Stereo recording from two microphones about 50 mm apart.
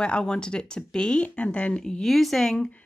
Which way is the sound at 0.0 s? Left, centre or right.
Centre.